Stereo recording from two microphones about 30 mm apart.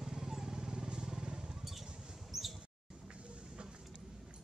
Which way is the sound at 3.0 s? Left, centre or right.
Right.